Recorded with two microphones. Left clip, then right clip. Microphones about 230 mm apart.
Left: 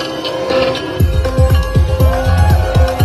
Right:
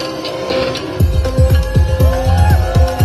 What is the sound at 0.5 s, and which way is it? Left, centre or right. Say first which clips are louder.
Music: left 3 dB; left.